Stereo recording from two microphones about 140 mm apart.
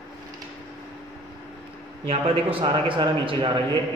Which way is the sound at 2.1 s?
40° right (ahead or behind).